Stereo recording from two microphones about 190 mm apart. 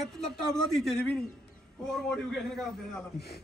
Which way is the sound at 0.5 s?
5° left (ahead or behind).